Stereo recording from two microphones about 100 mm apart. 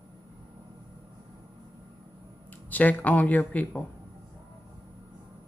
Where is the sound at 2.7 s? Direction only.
15° left (ahead or behind).